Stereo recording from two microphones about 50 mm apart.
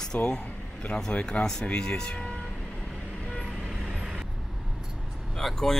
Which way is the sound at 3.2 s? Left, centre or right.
Left.